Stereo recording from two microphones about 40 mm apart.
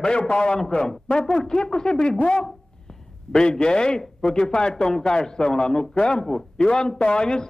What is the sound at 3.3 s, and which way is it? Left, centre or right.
A man's voice, left.